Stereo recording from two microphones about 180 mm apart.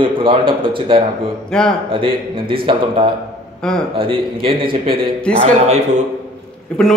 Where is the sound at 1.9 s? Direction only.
30° right (ahead or behind).